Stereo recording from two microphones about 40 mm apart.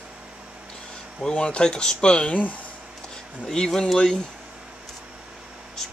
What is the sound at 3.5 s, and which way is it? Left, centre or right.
Speech, centre.